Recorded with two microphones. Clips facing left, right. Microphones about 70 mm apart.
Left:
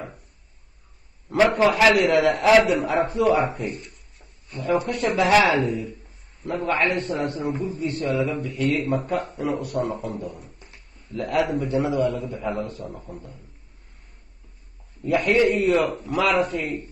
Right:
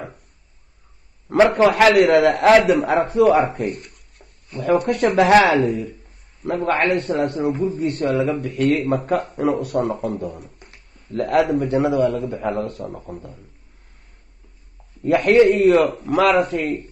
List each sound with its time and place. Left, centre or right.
1.3 s a man's voice: right
15.0 s a man's voice: right